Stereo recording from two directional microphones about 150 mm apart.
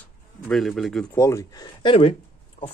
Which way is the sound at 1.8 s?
35° left (ahead or behind).